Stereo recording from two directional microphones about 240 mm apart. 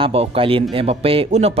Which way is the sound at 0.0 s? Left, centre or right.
Right.